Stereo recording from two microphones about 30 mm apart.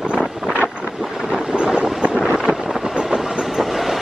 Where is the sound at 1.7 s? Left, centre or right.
Right.